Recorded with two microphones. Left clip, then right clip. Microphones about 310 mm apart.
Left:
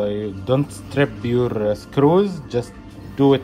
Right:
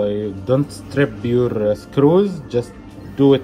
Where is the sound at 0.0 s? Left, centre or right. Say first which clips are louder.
Right 3 dB; centre.